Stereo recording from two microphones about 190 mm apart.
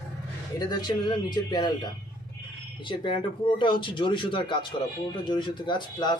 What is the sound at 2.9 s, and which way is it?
Speech, 25° left (ahead or behind).